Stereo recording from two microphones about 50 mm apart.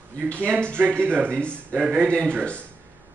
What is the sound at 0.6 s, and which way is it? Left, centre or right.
Speech, right.